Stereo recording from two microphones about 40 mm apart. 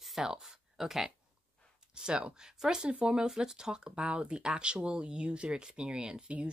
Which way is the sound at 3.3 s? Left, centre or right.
Centre.